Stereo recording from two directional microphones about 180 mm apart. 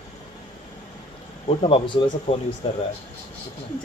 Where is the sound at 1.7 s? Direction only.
30° left (ahead or behind).